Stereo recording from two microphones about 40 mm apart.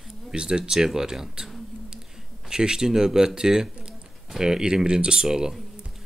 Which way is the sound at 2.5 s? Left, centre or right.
Centre.